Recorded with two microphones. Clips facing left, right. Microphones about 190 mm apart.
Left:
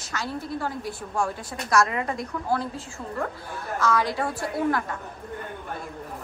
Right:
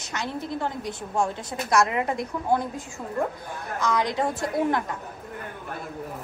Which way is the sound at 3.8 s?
15° right (ahead or behind).